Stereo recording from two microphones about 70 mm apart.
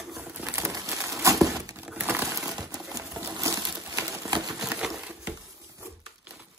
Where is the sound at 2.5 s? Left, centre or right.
Right.